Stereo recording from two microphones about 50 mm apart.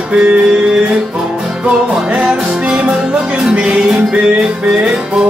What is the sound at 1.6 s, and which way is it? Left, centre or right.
Music, right.